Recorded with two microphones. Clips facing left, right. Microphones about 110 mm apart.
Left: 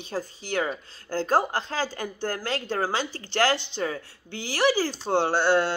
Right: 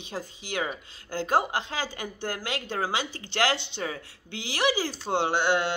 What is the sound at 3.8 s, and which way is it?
Speech, 40° left (ahead or behind).